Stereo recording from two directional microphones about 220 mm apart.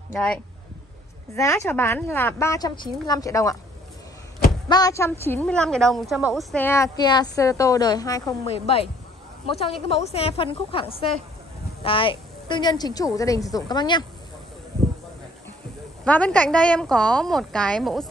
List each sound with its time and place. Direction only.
0.1 s a woman's voice: 5° left (ahead or behind)
4.6 s a woman's voice: 15° left (ahead or behind)
16.0 s a woman's voice: 5° left (ahead or behind)